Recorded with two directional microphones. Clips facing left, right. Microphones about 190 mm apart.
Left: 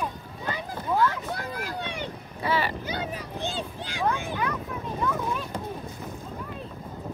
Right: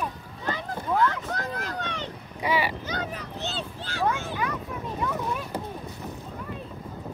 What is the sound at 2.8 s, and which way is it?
Vehicle, 10° left (ahead or behind).